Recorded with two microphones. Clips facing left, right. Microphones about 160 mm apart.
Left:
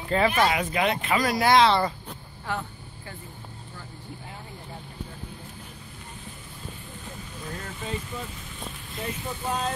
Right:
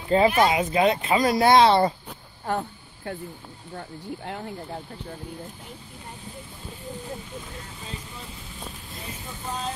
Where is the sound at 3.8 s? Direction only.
65° right (ahead or behind).